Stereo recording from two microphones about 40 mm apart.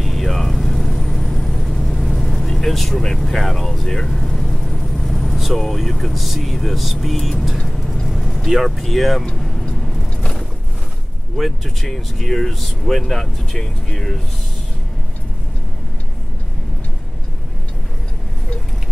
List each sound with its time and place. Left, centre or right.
0.0 s vehicle: centre
8.5 s speech: centre
9.3 s vehicle: centre
11.3 s speech: centre